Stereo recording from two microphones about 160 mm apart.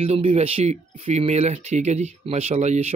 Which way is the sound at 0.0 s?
35° right (ahead or behind).